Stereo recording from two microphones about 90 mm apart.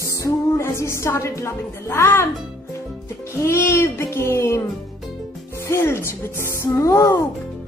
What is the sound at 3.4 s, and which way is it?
Speech, 25° left (ahead or behind).